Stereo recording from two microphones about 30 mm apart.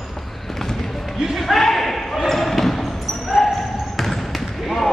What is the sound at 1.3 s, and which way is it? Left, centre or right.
Basketball bounce, centre.